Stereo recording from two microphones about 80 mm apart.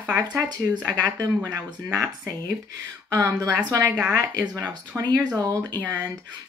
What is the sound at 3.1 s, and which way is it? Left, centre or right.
Speech, right.